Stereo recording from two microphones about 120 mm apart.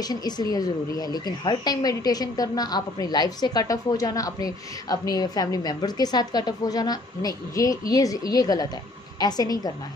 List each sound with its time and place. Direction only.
0.0 s speech: 35° left (ahead or behind)